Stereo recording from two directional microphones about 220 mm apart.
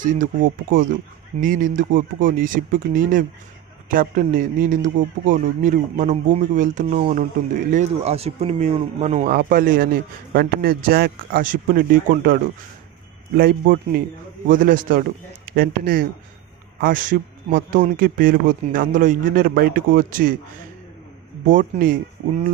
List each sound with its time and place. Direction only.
0.0 s speech: 35° right (ahead or behind)
13.4 s a man's voice: 45° right (ahead or behind)
21.5 s speech: 35° right (ahead or behind)